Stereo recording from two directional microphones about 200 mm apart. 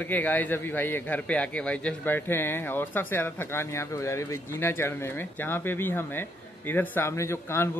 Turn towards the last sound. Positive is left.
turn(degrees=15)  # may be behind; listen again after turning